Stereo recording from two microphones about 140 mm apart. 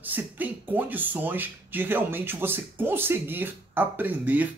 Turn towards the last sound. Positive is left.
turn(degrees=-10)  # may be behind; listen again after turning